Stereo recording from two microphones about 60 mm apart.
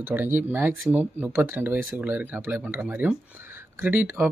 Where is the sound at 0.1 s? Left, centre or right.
Right.